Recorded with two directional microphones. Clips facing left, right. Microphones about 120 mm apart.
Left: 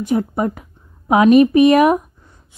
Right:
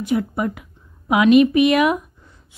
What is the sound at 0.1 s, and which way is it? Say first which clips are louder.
A woman's voice: left 2 dB; 40° left (ahead or behind).